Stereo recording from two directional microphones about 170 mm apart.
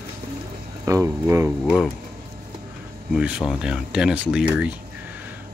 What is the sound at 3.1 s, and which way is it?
Speech, 5° right (ahead or behind).